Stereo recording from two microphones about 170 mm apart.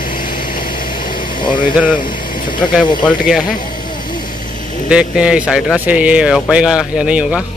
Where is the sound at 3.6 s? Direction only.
55° left (ahead or behind).